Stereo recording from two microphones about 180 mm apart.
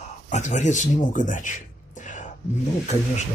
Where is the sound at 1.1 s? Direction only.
45° left (ahead or behind).